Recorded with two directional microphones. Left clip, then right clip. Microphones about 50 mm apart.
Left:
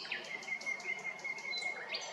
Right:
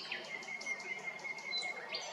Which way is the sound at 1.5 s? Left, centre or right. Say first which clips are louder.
Left 1 dB; centre.